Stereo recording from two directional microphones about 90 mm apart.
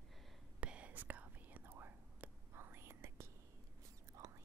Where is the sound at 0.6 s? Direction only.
15° right (ahead or behind).